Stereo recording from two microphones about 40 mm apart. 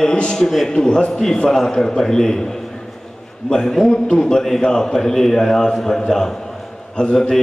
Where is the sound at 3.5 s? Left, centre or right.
Centre.